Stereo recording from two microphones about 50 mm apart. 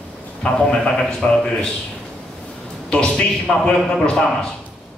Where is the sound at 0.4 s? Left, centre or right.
Centre.